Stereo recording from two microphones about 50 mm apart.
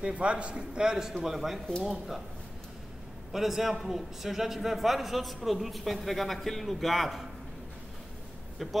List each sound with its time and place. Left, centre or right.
0.0 s a man's voice: right; by 2.2 s centre
3.3 s a man's voice: centre